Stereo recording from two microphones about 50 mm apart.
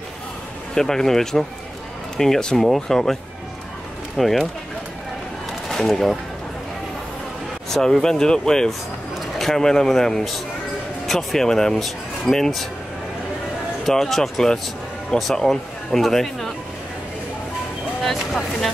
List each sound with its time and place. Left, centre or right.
0.7 s speech: centre
4.2 s speech: centre
5.7 s speech: centre
7.7 s speech: centre
13.8 s speech: centre
18.0 s speech: centre